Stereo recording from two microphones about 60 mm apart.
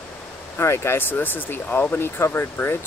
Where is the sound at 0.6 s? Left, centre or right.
Left.